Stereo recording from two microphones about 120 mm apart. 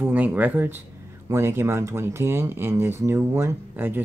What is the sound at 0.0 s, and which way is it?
Speech, 15° right (ahead or behind).